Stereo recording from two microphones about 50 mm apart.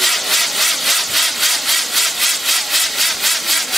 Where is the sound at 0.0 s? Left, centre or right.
Centre.